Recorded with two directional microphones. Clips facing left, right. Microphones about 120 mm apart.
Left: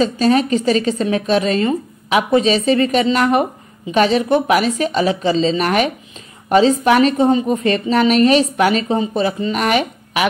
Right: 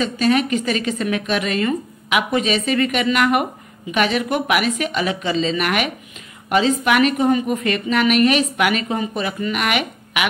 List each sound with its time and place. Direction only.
0.0 s a woman's voice: 35° left (ahead or behind)